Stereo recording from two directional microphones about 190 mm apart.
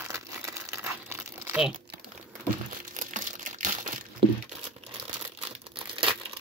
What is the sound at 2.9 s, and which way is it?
Crumpling, 40° right (ahead or behind).